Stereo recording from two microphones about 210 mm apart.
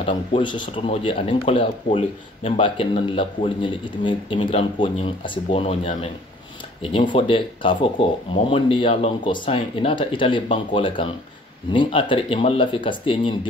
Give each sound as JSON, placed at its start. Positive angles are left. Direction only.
{"t": 0.0, "sound": "speech", "side_deg": 25}